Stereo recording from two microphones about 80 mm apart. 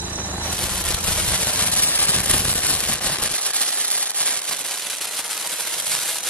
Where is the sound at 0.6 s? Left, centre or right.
Centre.